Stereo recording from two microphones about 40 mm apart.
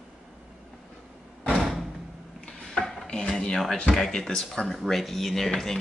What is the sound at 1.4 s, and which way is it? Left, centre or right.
Door, centre.